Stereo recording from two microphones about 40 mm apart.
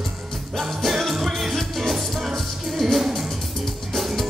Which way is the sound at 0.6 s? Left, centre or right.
Centre.